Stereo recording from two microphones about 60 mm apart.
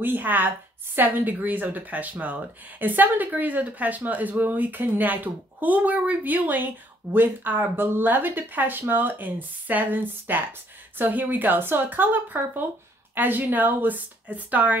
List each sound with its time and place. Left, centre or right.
0.0 s speech: right